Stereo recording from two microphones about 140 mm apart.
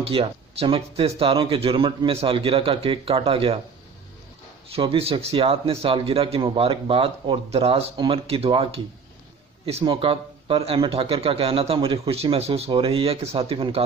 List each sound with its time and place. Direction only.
0.0 s speech: 45° right (ahead or behind)
4.7 s speech: 45° right (ahead or behind)